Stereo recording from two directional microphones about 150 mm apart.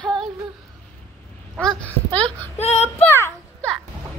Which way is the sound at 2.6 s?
45° left (ahead or behind).